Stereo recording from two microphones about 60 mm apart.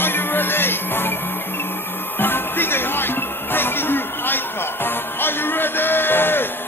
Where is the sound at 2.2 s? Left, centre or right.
Left.